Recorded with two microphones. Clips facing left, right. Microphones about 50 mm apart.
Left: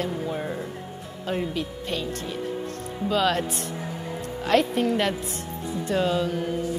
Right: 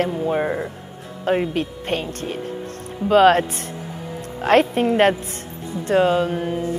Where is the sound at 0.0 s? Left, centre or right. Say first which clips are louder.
Right 8 dB; right.